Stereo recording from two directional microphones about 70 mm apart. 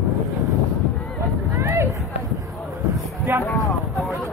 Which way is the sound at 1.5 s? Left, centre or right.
Right.